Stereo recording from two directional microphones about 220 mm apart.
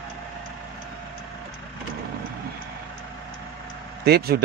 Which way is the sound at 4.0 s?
45° right (ahead or behind).